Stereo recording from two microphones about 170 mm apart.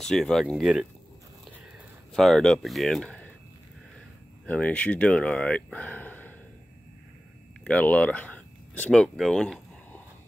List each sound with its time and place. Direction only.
0.0 s speech: 5° left (ahead or behind)
2.1 s speech: centre (ahead or behind)
4.5 s speech: 10° left (ahead or behind)
7.6 s speech: 10° left (ahead or behind)